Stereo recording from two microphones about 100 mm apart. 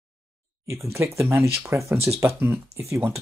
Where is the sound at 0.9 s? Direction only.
25° right (ahead or behind).